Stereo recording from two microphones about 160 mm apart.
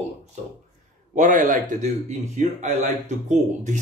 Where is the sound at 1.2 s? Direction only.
55° right (ahead or behind).